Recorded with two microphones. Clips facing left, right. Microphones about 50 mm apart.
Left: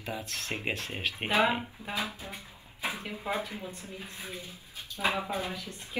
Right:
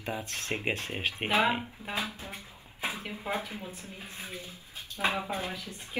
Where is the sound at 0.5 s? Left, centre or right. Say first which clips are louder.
Right 2 dB; centre.